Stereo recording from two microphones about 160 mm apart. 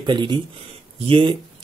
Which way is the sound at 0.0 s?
30° right (ahead or behind).